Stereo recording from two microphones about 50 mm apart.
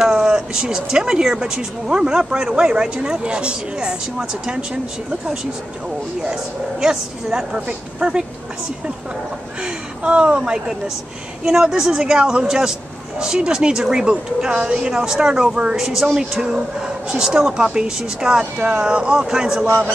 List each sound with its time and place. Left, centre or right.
0.0 s speech: centre
6.8 s speech: centre
9.6 s a woman's voice: right
18.4 s speech: right